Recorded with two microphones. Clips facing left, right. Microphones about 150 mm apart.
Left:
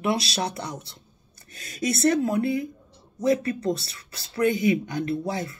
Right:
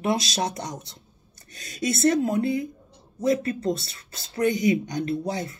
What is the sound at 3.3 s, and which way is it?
Speech, 25° right (ahead or behind).